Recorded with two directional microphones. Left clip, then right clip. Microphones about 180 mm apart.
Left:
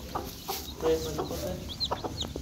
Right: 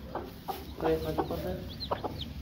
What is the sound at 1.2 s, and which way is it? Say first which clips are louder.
Chicken: right 2 dB; 20° right (ahead or behind).